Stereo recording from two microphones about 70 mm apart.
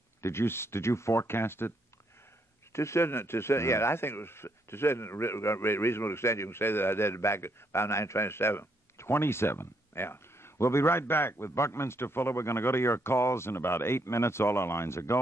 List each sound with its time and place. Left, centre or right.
0.2 s speech: left
2.7 s speech: left